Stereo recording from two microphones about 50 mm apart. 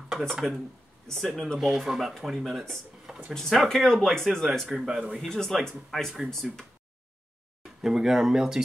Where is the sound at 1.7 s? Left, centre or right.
Centre.